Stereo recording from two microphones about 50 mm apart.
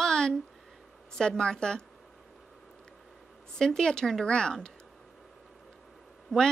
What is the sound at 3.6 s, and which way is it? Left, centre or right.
A woman's voice, centre.